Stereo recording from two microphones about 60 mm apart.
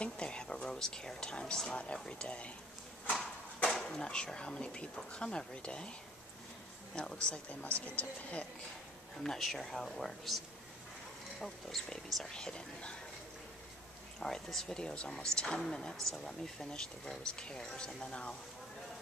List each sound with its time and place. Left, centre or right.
0.0 s a sound: centre
2.0 s speech: centre
3.1 s horse: centre
3.7 s speech: centre
7.0 s speech: centre
9.2 s speech: centre
11.4 s speech: centre
14.2 s speech: centre